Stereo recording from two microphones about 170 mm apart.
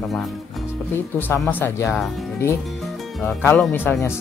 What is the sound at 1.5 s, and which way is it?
Speech, 15° left (ahead or behind).